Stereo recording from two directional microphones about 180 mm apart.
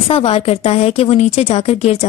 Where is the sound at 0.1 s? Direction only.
35° left (ahead or behind).